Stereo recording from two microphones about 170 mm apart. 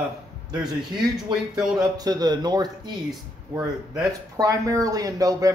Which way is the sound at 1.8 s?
20° right (ahead or behind).